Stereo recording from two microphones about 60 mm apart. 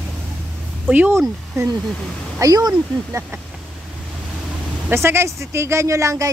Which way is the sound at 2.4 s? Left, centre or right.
Right.